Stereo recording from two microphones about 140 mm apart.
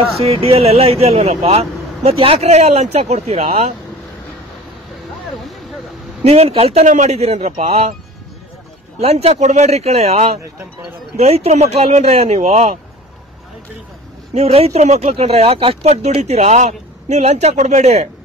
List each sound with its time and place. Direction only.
0.2 s speech: 45° right (ahead or behind)
6.2 s speech: 45° right (ahead or behind)
9.0 s speech: 50° right (ahead or behind)
14.3 s speech: 50° right (ahead or behind)